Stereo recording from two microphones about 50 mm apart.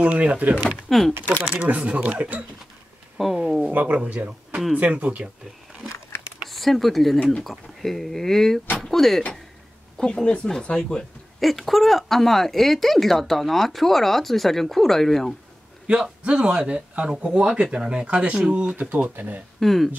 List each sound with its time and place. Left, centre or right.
0.0 s speech: right
0.6 s speech: centre
0.8 s speech: centre
1.6 s speech: right
3.4 s speech: centre
3.7 s speech: right
6.4 s speech: centre
15.9 s speech: centre
19.6 s speech: centre